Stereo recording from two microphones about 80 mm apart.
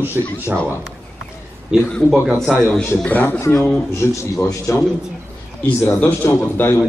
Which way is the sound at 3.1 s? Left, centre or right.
Left.